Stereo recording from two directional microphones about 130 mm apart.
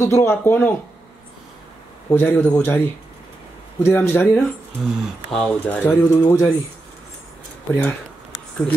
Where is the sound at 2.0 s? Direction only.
15° left (ahead or behind).